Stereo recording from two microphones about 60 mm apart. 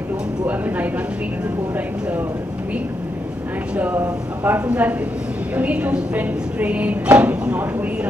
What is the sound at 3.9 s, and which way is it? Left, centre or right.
Speech, right.